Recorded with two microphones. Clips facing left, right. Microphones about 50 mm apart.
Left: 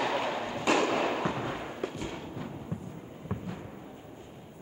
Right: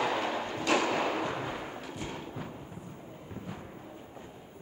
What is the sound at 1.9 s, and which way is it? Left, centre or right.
Thump, centre.